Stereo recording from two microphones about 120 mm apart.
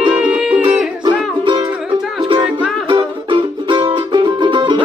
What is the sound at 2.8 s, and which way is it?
Music, 40° right (ahead or behind).